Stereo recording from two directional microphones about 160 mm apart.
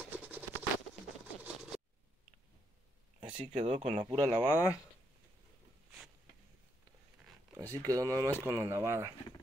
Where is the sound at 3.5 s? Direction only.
40° right (ahead or behind).